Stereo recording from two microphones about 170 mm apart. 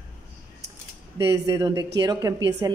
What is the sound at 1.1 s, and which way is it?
Speech, 20° right (ahead or behind).